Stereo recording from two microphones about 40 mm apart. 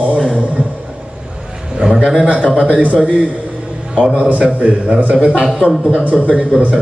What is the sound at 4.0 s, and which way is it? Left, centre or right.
Speech, right.